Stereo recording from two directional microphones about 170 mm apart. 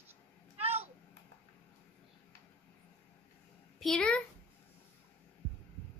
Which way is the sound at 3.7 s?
Centre (ahead or behind).